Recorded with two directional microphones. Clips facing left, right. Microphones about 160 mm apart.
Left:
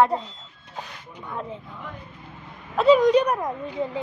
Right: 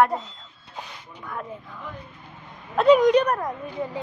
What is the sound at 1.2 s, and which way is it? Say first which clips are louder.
Speech: left 1 dB; 25° left (ahead or behind).